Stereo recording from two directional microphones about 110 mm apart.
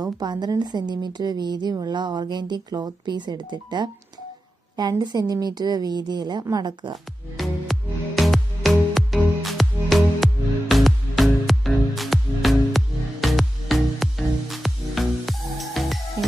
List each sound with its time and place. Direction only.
0.0 s a woman's voice: 40° right (ahead or behind)
7.3 s music: centre (ahead or behind)